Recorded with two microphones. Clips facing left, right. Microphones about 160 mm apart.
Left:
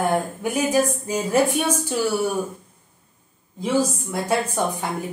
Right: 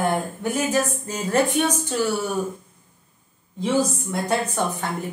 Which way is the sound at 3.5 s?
10° left (ahead or behind).